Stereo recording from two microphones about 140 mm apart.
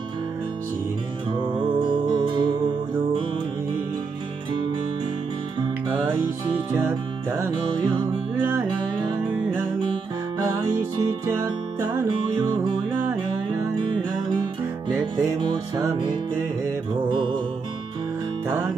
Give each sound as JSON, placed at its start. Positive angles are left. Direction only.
{"t": 1.3, "sound": "music", "side_deg": -35}
{"t": 15.1, "sound": "music", "side_deg": -30}
{"t": 17.1, "sound": "music", "side_deg": -35}